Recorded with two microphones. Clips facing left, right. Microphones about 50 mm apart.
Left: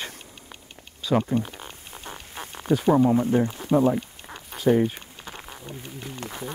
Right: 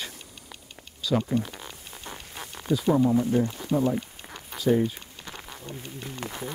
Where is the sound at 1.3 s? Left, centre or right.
Centre.